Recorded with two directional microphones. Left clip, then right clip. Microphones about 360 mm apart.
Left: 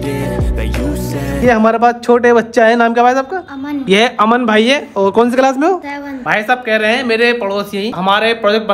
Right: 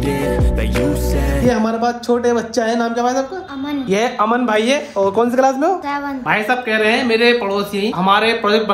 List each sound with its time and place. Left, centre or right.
0.0 s music: centre
1.5 s speech: left
6.2 s speech: centre